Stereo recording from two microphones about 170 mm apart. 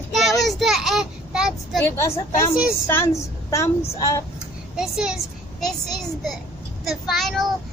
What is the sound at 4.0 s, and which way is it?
Speech, 20° left (ahead or behind).